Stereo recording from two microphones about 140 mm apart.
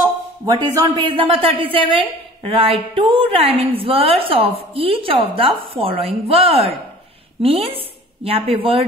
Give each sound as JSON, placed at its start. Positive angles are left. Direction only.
{"t": 0.7, "sound": "a woman's voice", "side_deg": -30}